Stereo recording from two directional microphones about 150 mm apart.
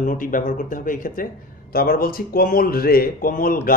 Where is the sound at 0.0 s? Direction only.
65° left (ahead or behind).